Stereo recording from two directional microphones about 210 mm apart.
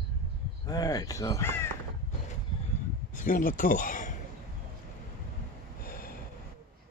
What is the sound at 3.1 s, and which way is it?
Speech, 40° left (ahead or behind).